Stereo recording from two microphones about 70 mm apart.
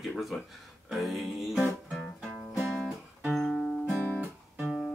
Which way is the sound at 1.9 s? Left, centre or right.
Centre.